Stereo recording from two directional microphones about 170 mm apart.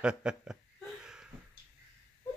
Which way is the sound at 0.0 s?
5° right (ahead or behind).